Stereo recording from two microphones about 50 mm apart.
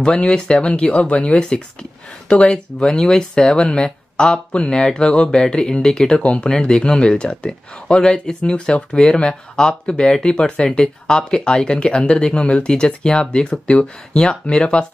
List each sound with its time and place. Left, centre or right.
0.0 s speech: centre